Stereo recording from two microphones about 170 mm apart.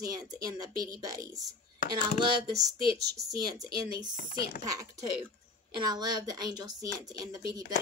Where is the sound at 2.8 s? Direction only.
65° right (ahead or behind).